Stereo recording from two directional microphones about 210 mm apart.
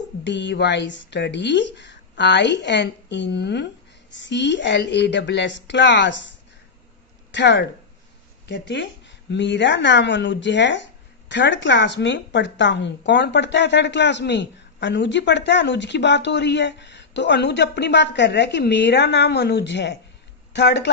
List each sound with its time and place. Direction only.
0.2 s speech: 55° left (ahead or behind)
7.2 s speech: 55° left (ahead or behind)